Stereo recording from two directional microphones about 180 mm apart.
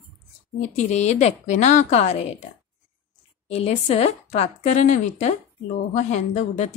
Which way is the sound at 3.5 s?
35° left (ahead or behind).